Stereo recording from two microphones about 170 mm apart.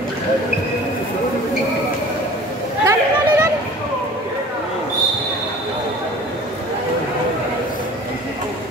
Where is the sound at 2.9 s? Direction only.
15° right (ahead or behind).